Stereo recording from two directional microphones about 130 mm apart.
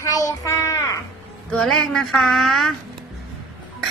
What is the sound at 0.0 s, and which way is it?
Child singing, 25° left (ahead or behind).